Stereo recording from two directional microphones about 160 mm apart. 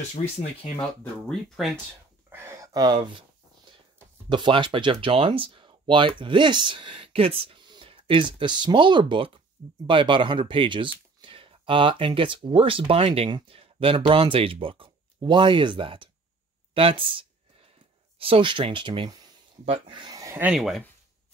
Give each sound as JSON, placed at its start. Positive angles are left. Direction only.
{"t": 0.1, "sound": "speech", "side_deg": 40}
{"t": 1.3, "sound": "speech", "side_deg": 0}
{"t": 2.2, "sound": "speech", "side_deg": -15}
{"t": 4.3, "sound": "speech", "side_deg": -30}
{"t": 16.7, "sound": "a sound", "side_deg": -35}
{"t": 18.2, "sound": "speech", "side_deg": -35}
{"t": 20.5, "sound": "speech", "side_deg": 0}